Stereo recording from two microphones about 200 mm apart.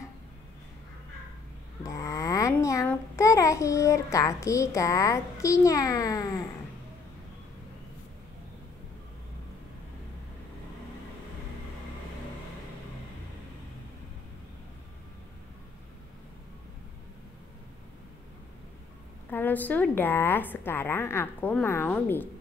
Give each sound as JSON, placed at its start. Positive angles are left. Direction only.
{"t": 1.8, "sound": "a child's voice", "side_deg": 15}
{"t": 19.3, "sound": "a woman's voice", "side_deg": 10}